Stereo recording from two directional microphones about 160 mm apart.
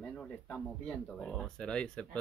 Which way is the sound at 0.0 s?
5° left (ahead or behind).